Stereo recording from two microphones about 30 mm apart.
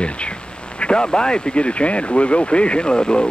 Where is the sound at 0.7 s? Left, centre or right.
Left.